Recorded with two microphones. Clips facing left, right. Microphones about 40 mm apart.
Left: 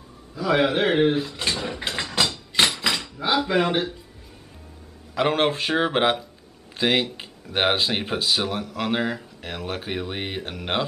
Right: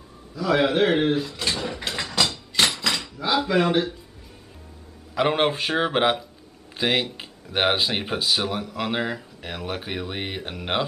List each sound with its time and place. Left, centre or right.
0.3 s speech: centre
1.5 s ratchet: centre
2.8 s dishes: centre
3.4 s speech: centre
5.1 s speech: centre